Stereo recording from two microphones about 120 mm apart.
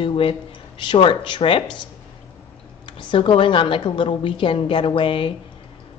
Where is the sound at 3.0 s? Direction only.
45° left (ahead or behind).